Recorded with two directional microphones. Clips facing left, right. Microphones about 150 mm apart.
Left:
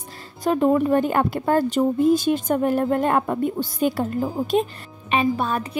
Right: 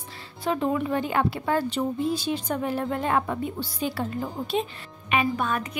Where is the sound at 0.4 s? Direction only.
45° left (ahead or behind).